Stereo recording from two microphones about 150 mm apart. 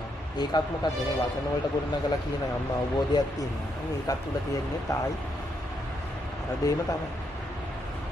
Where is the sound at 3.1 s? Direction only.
25° left (ahead or behind).